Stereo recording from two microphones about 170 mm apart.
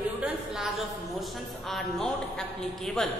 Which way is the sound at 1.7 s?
Centre (ahead or behind).